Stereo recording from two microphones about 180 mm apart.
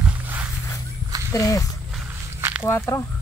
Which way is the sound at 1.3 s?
20° left (ahead or behind).